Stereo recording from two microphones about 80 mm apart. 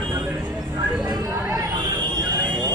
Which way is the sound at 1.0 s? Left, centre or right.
Right.